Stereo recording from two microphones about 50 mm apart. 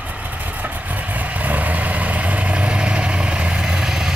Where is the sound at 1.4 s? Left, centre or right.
Right.